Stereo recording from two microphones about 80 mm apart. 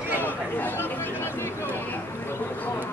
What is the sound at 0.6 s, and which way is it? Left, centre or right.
Chatter, left.